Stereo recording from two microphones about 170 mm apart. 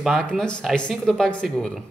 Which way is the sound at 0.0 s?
Centre (ahead or behind).